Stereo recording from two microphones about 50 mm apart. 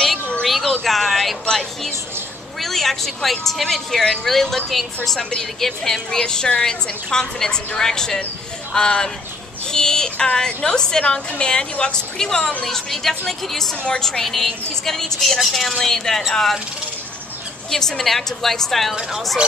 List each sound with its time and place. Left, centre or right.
0.5 s a sound: centre
2.6 s a woman's voice: centre
17.6 s speech: centre